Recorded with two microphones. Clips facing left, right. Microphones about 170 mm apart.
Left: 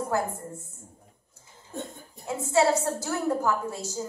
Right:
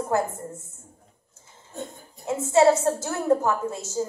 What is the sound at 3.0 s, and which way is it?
A woman's voice, 25° right (ahead or behind).